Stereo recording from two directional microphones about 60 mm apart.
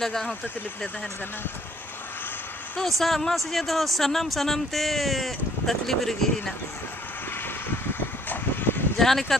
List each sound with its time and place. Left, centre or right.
0.0 s speech: centre
3.0 s speech: centre
7.9 s vehicle: left
8.9 s speech: centre